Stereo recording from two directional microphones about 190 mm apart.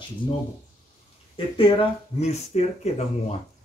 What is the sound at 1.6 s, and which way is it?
Speech, 30° left (ahead or behind).